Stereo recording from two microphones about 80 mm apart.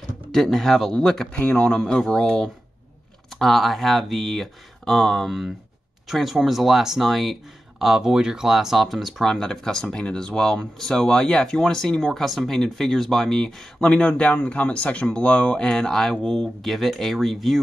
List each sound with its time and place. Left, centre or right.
0.3 s speech: centre